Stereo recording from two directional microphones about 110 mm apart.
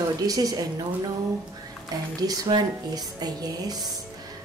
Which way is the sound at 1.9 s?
35° right (ahead or behind).